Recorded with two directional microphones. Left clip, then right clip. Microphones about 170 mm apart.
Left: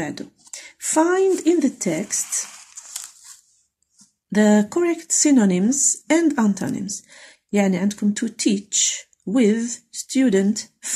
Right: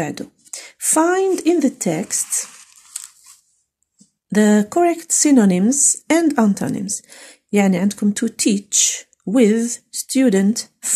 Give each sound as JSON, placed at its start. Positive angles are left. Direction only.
{"t": 0.0, "sound": "speech", "side_deg": -30}
{"t": 4.3, "sound": "speech", "side_deg": -30}